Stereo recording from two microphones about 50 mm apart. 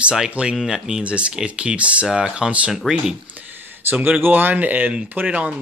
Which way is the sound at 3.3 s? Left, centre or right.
Right.